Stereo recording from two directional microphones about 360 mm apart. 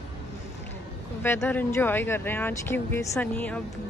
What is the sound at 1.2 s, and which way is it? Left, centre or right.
Speech, centre.